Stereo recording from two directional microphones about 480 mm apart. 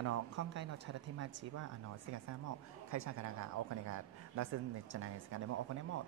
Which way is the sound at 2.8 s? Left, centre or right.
Right.